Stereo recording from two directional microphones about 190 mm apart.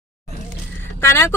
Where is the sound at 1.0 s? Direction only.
10° left (ahead or behind).